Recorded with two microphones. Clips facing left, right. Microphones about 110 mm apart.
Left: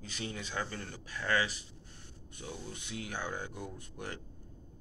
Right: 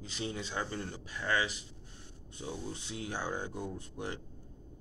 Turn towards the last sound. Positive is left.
turn(degrees=-25)  # may be behind; listen again after turning